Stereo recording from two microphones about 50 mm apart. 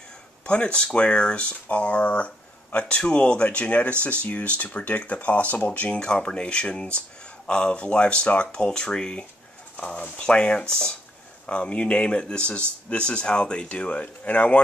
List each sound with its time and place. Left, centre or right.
0.5 s speech: left